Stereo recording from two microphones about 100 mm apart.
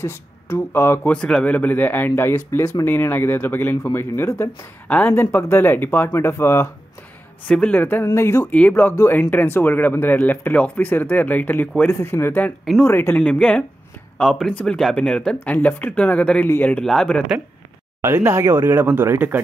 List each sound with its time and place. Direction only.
0.0 s speech: 25° left (ahead or behind)
1.1 s speech: 10° left (ahead or behind); by 4.6 s 30° left (ahead or behind)
4.8 s speech: 15° left (ahead or behind)
7.4 s speech: 10° left (ahead or behind); by 8.5 s 30° left (ahead or behind)
8.5 s speech: 15° left (ahead or behind)
16.8 s speech: 5° left (ahead or behind)
18.0 s speech: 30° right (ahead or behind)